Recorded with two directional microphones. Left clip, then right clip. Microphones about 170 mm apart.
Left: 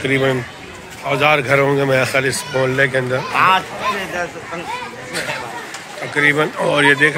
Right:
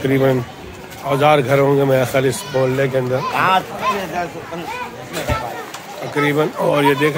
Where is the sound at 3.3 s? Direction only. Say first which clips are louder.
Left 2 dB; 75° right (ahead or behind).